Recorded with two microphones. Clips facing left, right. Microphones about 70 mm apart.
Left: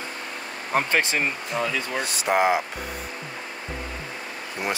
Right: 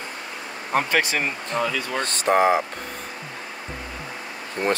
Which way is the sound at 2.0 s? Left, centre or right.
Centre.